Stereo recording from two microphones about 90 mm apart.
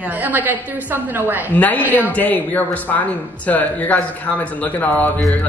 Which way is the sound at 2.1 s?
20° left (ahead or behind).